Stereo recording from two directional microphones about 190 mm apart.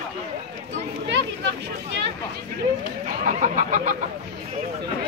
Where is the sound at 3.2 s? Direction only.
40° right (ahead or behind).